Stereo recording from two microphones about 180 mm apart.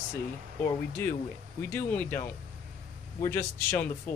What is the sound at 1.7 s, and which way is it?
Speech, 10° left (ahead or behind).